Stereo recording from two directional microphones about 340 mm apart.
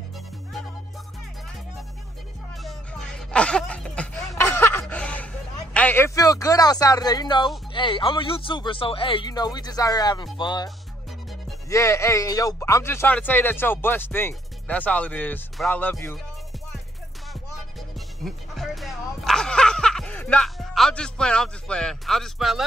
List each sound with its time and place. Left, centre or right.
2.5 s music: centre
7.7 s speech: centre
11.7 s speech: centre
17.3 s music: centre